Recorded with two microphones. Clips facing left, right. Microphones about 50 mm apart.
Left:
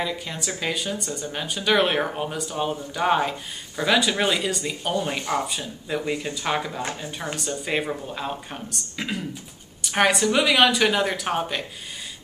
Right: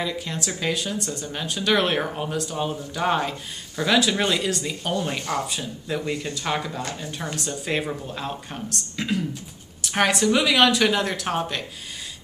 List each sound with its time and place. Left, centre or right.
0.0 s speech: centre
6.8 s speech: left
7.3 s speech: centre